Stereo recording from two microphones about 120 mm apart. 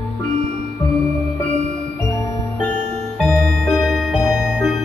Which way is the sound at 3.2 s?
Centre (ahead or behind).